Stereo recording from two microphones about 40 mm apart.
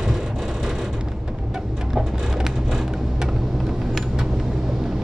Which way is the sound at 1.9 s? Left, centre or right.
Centre.